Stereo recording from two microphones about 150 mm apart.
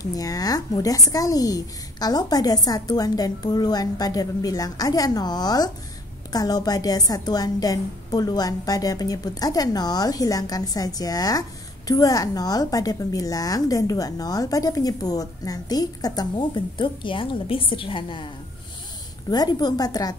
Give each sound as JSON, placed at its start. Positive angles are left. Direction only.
{"t": 0.0, "sound": "a woman's voice", "side_deg": 25}
{"t": 19.3, "sound": "a woman's voice", "side_deg": 25}